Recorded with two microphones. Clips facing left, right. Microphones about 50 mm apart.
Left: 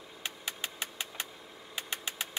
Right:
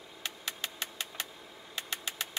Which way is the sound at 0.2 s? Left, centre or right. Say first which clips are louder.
Even; centre.